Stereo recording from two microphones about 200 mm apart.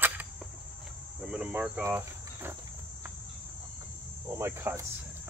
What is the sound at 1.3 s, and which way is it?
Speech, 5° right (ahead or behind).